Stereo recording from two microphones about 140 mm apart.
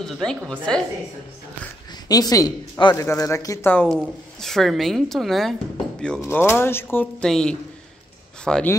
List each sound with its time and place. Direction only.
0.0 s a woman's voice: 5° left (ahead or behind)
2.0 s speech: 25° left (ahead or behind)
3.8 s a woman's voice: centre (ahead or behind)
6.2 s speech: 15° left (ahead or behind)
7.2 s a woman's voice: 5° left (ahead or behind)